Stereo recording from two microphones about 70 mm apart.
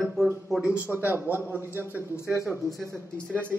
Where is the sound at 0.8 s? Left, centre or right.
Right.